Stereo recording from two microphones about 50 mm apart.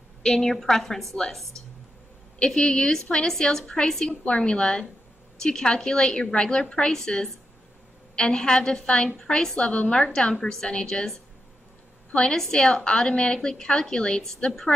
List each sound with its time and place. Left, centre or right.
0.2 s a woman's voice: centre
2.3 s a woman's voice: centre
12.1 s a woman's voice: centre